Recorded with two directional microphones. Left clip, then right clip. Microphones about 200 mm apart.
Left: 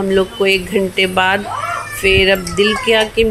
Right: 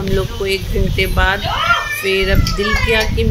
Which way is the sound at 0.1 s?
15° left (ahead or behind).